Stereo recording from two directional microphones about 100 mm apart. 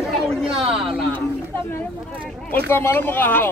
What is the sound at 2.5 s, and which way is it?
Speech, 20° left (ahead or behind).